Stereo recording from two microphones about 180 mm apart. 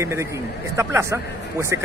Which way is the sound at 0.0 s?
15° right (ahead or behind).